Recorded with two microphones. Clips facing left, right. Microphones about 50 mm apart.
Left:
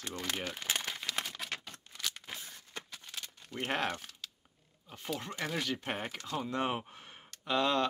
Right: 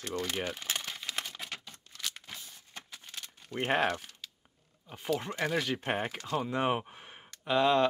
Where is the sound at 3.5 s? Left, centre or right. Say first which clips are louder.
Right 5 dB; right.